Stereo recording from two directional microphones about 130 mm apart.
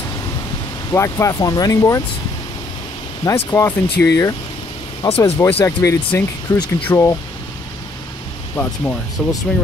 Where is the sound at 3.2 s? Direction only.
25° left (ahead or behind).